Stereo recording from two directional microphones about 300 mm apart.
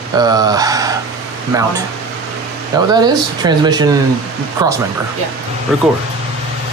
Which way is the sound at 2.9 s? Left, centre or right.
Centre.